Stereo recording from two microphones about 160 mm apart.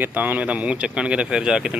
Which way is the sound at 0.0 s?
10° right (ahead or behind).